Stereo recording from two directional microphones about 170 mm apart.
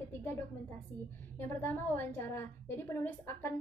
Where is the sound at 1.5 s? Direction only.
10° left (ahead or behind).